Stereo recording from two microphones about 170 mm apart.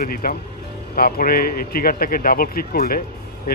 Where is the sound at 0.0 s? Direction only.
55° left (ahead or behind).